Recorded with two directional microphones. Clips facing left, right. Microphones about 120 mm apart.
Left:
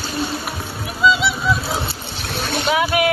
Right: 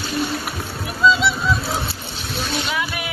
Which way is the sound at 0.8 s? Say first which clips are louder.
Even; 5° left (ahead or behind).